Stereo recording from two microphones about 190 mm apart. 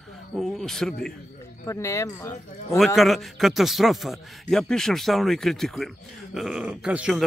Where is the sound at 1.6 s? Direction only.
15° left (ahead or behind).